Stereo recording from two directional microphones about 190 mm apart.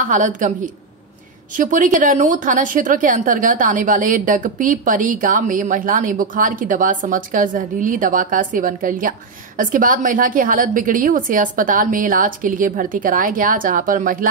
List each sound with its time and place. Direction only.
0.0 s speech: 40° right (ahead or behind)
1.6 s speech: 45° right (ahead or behind)